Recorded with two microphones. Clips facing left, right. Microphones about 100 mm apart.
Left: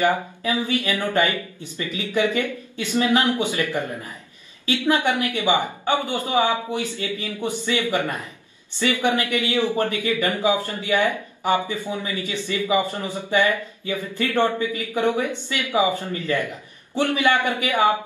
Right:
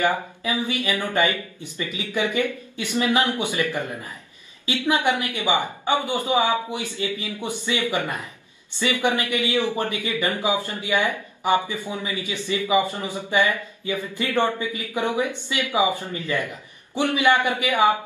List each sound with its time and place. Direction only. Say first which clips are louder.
0.7 s speech: left 2 dB; 15° right (ahead or behind)
4.6 s speech: left 1 dB; 15° right (ahead or behind)